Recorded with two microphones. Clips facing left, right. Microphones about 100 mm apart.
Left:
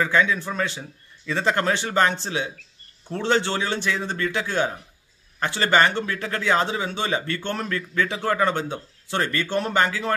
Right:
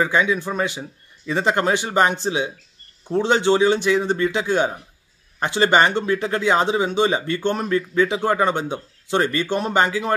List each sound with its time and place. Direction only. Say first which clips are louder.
0.0 s a man's voice: right 2 dB; 15° right (ahead or behind)